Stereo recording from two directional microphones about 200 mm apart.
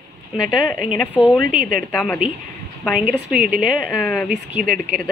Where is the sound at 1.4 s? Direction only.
40° right (ahead or behind).